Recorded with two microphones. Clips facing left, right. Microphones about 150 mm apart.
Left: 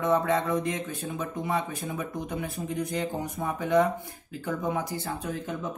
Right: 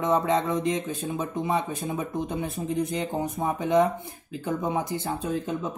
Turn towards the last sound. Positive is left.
turn(degrees=-20)  # may be behind; listen again after turning